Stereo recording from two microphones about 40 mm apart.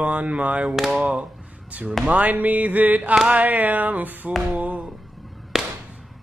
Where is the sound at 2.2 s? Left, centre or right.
Right.